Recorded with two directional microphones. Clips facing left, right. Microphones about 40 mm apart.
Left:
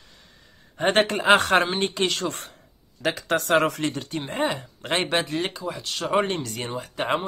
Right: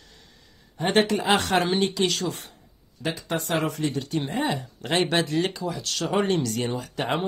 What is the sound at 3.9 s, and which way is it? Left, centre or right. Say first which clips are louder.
Speech: right 3 dB; left.